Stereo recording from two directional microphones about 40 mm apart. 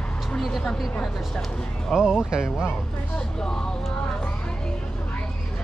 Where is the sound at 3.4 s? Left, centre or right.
Centre.